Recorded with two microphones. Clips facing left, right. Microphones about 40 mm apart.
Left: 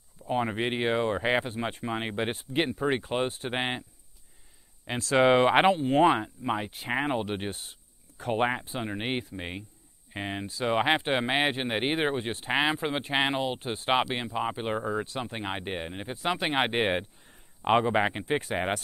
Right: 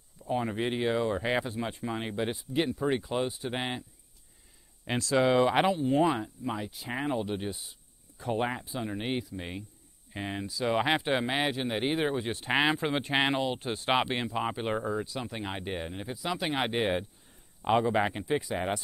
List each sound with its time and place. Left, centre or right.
0.2 s speech: left
5.0 s speech: left
12.4 s speech: centre
14.1 s speech: centre
15.0 s speech: left
16.2 s speech: left
17.9 s speech: left
18.4 s speech: left